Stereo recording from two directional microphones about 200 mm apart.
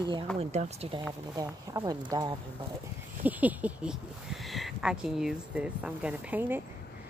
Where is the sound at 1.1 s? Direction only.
15° right (ahead or behind).